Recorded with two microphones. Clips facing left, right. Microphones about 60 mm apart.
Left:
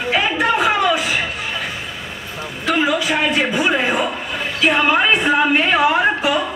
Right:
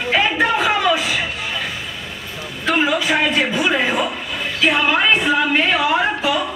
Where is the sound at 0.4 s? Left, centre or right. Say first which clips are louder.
Left 1 dB; left.